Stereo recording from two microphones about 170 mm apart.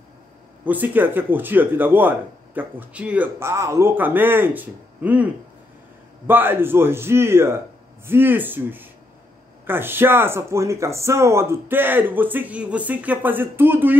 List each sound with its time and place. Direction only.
0.7 s speech: 10° right (ahead or behind)